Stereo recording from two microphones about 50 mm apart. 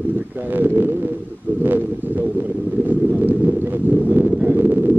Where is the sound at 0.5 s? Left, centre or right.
Right.